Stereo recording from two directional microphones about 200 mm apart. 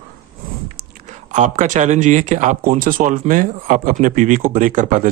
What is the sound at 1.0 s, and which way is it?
Speech, 35° right (ahead or behind).